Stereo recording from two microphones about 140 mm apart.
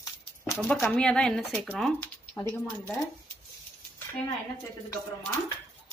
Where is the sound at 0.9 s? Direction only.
5° left (ahead or behind).